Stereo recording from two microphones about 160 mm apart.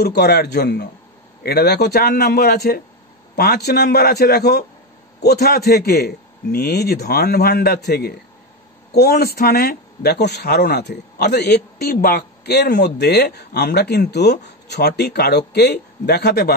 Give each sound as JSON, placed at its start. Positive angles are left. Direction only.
{"t": 0.0, "sound": "a man's voice", "side_deg": 90}